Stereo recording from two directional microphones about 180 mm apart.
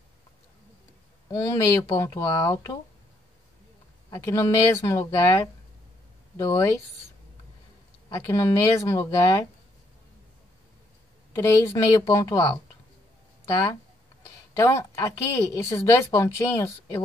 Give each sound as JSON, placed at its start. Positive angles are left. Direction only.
{"t": 1.3, "sound": "speech", "side_deg": 20}
{"t": 4.1, "sound": "speech", "side_deg": 20}
{"t": 8.1, "sound": "a woman's voice", "side_deg": 15}
{"t": 11.3, "sound": "a woman's voice", "side_deg": 15}